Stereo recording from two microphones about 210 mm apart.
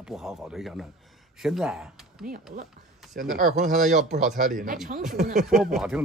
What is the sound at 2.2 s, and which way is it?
A woman's voice, 45° right (ahead or behind).